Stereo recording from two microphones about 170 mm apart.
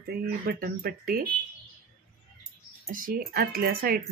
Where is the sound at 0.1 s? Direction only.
65° right (ahead or behind).